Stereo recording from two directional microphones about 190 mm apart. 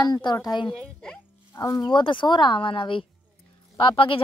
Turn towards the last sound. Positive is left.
turn(degrees=25)  # may be behind; listen again after turning